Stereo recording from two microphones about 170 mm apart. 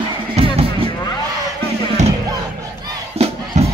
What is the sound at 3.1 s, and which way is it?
Crowd, 35° right (ahead or behind).